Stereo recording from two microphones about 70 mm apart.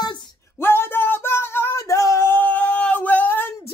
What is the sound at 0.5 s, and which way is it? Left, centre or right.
Speech, left.